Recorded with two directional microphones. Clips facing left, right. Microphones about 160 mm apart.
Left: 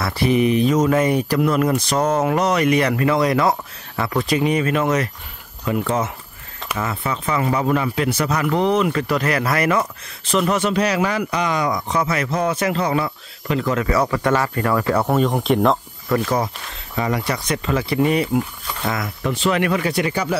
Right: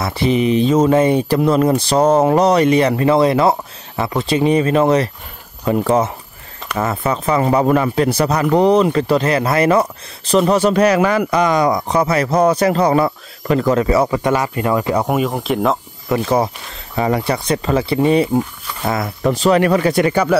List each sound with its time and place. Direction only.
0.0 s speech: 25° right (ahead or behind)
10.7 s speech: 55° right (ahead or behind)
13.8 s speech: 25° right (ahead or behind); by 15.8 s centre (ahead or behind)
16.1 s speech: 25° right (ahead or behind); by 20.3 s 55° right (ahead or behind)